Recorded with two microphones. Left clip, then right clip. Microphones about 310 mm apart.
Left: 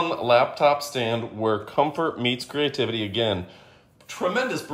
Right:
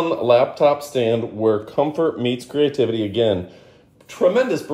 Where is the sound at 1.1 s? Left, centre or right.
Left.